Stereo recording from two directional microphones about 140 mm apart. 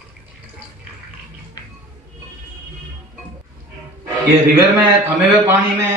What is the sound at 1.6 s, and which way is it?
Music, 25° left (ahead or behind).